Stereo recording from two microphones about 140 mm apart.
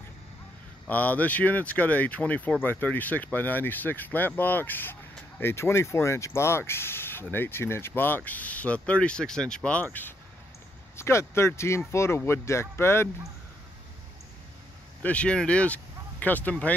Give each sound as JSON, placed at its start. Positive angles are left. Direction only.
{"t": 0.8, "sound": "speech", "side_deg": 10}
{"t": 11.0, "sound": "speech", "side_deg": 20}
{"t": 15.0, "sound": "speech", "side_deg": 10}